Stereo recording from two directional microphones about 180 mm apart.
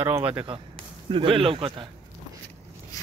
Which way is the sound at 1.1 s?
30° right (ahead or behind).